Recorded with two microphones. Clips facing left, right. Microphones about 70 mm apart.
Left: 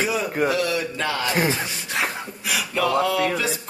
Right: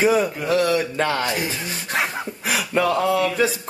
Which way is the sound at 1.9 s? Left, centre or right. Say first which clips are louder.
Right 3 dB; right.